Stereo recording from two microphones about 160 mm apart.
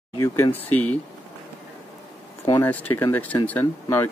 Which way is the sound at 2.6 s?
10° left (ahead or behind).